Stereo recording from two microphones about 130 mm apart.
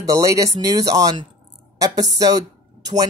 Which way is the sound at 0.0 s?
25° right (ahead or behind).